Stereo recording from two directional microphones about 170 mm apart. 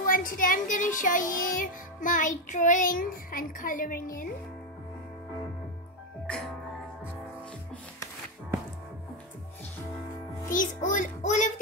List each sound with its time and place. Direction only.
0.0 s music: 55° left (ahead or behind)
10.5 s a child's voice: 50° left (ahead or behind)